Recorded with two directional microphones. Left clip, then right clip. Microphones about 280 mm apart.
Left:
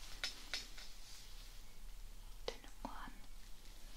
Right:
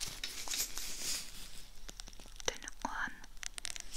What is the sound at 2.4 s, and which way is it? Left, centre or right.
Whispering, right.